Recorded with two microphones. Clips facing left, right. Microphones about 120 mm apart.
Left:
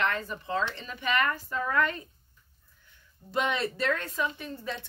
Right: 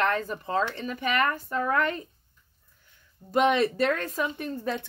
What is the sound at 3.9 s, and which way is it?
Speech, 40° right (ahead or behind).